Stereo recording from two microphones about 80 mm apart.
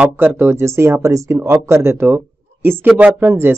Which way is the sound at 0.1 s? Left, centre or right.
Right.